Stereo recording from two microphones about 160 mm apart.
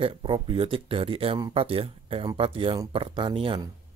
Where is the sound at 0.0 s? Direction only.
35° right (ahead or behind).